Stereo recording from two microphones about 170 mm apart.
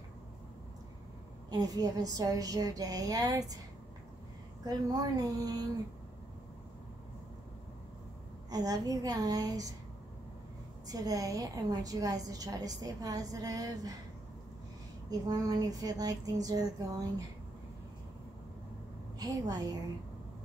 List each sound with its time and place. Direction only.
1.5 s a woman's voice: 20° right (ahead or behind)
4.6 s a woman's voice: 25° right (ahead or behind)
8.5 s a woman's voice: 20° right (ahead or behind)
10.9 s a woman's voice: 20° right (ahead or behind)
15.0 s a woman's voice: 20° right (ahead or behind)
19.1 s a woman's voice: 20° right (ahead or behind)